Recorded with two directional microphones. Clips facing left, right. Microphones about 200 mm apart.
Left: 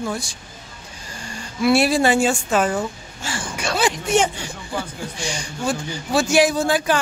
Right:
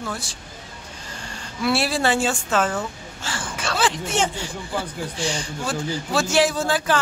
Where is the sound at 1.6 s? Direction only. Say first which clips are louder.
Left 5 dB; 15° left (ahead or behind).